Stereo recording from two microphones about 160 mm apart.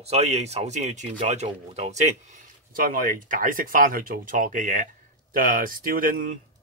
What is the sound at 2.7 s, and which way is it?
Speech, 65° right (ahead or behind).